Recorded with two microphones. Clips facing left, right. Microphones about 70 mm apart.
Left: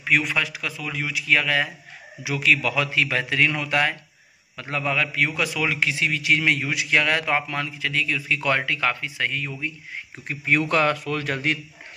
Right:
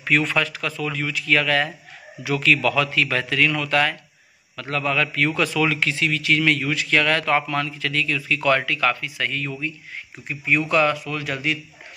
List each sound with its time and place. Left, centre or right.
0.0 s a man's voice: centre
10.2 s a man's voice: left